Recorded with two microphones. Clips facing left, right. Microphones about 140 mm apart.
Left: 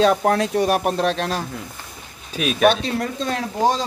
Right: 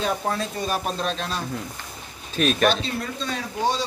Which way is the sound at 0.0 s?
80° left.